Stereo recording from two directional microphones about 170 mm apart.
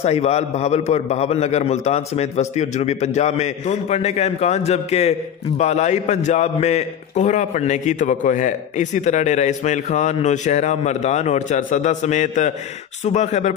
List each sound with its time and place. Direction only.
0.0 s a man's voice: 40° left (ahead or behind)